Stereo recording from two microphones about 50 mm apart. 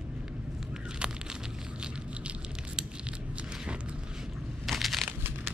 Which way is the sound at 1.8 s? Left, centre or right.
Centre.